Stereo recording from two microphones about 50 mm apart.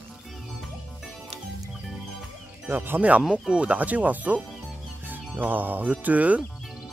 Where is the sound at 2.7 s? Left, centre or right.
Right.